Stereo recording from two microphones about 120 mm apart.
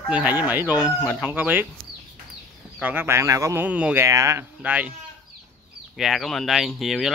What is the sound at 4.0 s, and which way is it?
Speech, 25° right (ahead or behind).